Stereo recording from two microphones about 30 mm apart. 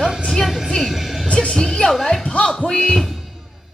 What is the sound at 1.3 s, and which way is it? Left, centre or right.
Speech, left.